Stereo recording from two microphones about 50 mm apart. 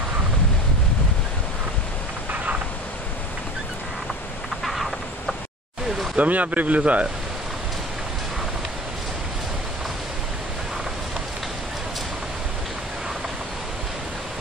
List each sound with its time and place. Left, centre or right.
4.6 s fowl: centre
6.1 s speech: right